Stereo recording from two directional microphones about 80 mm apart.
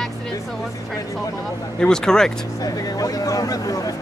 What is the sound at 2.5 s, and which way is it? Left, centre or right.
Speech, left.